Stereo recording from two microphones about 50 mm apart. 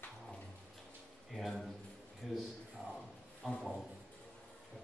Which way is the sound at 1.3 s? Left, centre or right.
Centre.